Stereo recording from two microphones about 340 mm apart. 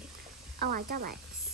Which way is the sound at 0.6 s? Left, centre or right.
Right.